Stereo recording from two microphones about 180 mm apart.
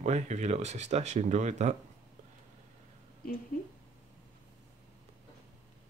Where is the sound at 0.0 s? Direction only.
40° right (ahead or behind).